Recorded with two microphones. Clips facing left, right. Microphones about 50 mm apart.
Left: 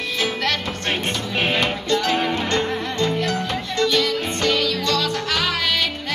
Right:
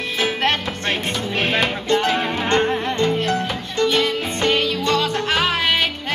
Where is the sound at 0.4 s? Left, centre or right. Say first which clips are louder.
Right 3 dB; right.